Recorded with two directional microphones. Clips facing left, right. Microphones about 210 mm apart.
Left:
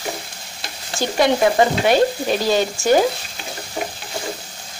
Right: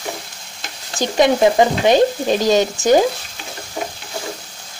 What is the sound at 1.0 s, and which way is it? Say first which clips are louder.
Stir: right 2 dB; 20° right (ahead or behind).